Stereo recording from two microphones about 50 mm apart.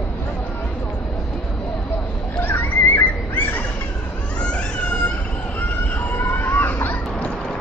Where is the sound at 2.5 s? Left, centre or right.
Left.